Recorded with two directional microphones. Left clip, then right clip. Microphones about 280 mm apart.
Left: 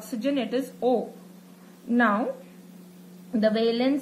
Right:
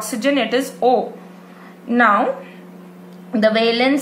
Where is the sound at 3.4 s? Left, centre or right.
Centre.